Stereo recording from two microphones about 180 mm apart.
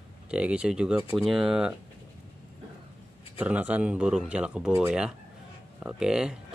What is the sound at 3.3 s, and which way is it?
Speech, 10° right (ahead or behind).